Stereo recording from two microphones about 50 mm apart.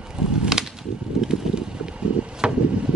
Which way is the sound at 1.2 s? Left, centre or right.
Centre.